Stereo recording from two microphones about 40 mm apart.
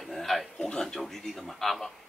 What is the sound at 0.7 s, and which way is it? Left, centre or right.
Speech, centre.